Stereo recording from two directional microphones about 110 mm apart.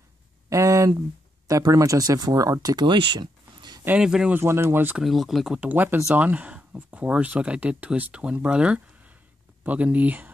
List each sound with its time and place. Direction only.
0.5 s a sound: 30° right (ahead or behind)
1.5 s speech: 35° right (ahead or behind)
3.8 s speech: 10° right (ahead or behind)
4.3 s speech: 20° right (ahead or behind)
5.0 s speech: centre (ahead or behind)
5.6 s speech: 15° right (ahead or behind)